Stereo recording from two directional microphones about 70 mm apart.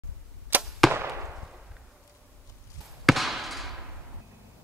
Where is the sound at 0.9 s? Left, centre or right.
Right.